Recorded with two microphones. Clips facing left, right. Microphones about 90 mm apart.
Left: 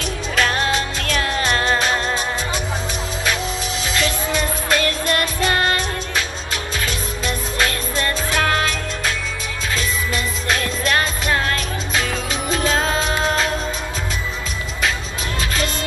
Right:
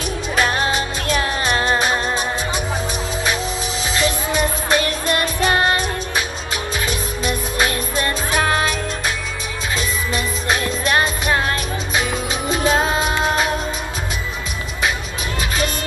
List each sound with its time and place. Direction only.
0.0 s music: 20° right (ahead or behind)
3.9 s music: 20° right (ahead or behind)